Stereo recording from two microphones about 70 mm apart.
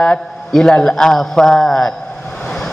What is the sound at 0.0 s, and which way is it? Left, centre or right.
A man's voice, centre.